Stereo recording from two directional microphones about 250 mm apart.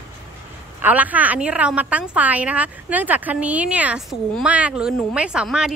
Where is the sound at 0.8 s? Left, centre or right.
Centre.